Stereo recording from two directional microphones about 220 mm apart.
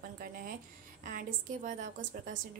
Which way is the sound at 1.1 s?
35° right (ahead or behind).